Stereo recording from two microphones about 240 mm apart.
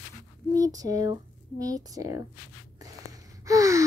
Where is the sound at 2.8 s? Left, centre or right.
Centre.